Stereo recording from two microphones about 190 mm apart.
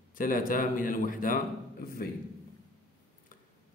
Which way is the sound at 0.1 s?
45° left (ahead or behind).